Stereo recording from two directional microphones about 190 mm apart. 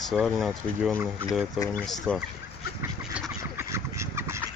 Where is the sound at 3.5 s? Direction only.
15° right (ahead or behind).